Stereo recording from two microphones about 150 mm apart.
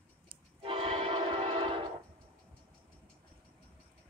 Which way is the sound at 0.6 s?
40° right (ahead or behind).